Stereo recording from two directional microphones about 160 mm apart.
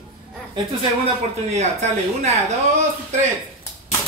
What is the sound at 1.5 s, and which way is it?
Speech, 45° right (ahead or behind).